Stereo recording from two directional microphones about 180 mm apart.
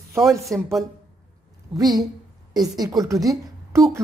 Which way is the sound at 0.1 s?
15° right (ahead or behind).